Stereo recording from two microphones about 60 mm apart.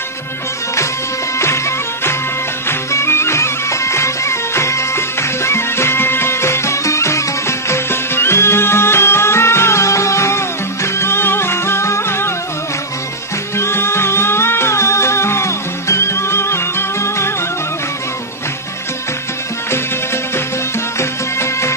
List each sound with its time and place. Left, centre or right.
2.9 s music: left
13.6 s music: left
21.0 s music: left